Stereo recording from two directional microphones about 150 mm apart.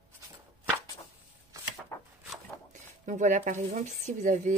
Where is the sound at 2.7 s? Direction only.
55° right (ahead or behind).